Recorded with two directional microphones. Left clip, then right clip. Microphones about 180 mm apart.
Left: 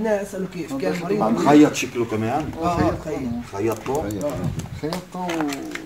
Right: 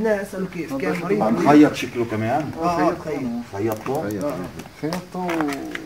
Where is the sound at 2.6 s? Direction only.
20° left (ahead or behind).